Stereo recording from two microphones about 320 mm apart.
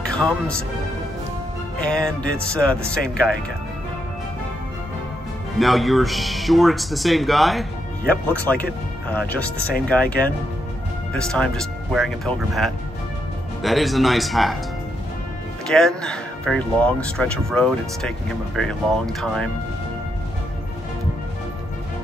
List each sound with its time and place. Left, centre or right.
0.0 s a man's voice: centre
1.8 s speech: centre
5.6 s speech: centre
15.6 s speech: centre